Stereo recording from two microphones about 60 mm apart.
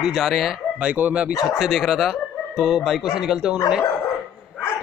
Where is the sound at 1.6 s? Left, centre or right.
Centre.